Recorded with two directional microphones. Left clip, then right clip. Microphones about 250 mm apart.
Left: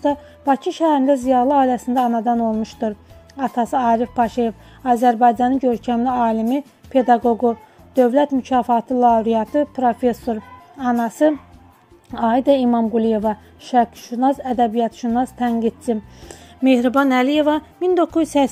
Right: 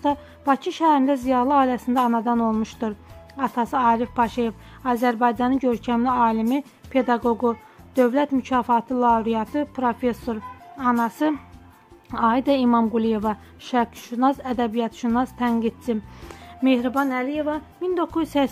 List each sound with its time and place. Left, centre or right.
0.0 s a woman's voice: centre
16.9 s speech: left
17.8 s speech: centre